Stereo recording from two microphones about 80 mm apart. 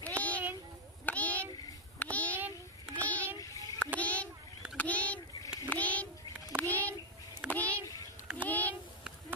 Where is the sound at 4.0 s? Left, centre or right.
Centre.